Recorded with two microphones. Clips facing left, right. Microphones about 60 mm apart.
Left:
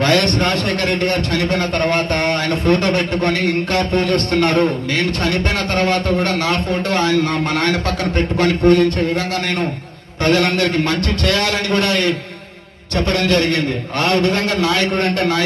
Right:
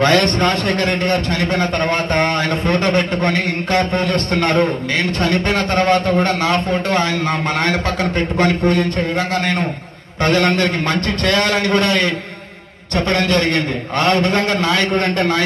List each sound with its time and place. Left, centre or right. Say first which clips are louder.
0.0 s a man's voice: right 1 dB; right
10.2 s a man's voice: even; right